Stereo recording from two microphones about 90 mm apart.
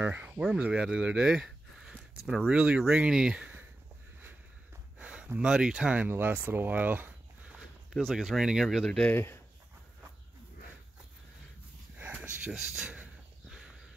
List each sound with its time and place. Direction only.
0.0 s a sound: 20° right (ahead or behind)
0.4 s speech: 10° right (ahead or behind)
2.5 s speech: 15° right (ahead or behind)
4.9 s speech: 15° right (ahead or behind)
7.9 s speech: centre (ahead or behind)
9.1 s speech: 25° left (ahead or behind)
12.0 s a sound: 15° right (ahead or behind)